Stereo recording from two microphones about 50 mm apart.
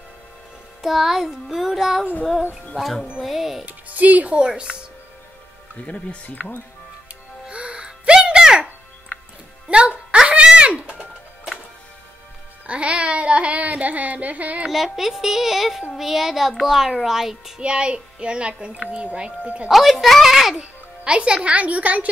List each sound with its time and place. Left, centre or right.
0.8 s music: centre
3.6 s speech: right
5.8 s speech: left
7.4 s music: right
9.7 s music: right
12.6 s a child's voice: right
14.7 s a child's voice: centre
15.9 s music: centre
17.0 s a child's voice: centre
17.6 s a child's voice: centre
19.7 s a sound: centre
20.5 s a child's voice: right